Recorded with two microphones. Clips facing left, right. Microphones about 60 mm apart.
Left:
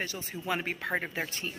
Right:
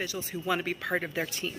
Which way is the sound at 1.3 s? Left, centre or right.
Left.